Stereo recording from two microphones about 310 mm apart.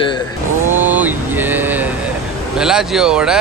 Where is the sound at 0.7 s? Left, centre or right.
Centre.